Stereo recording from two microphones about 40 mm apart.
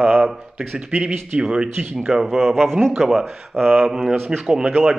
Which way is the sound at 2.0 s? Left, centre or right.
Centre.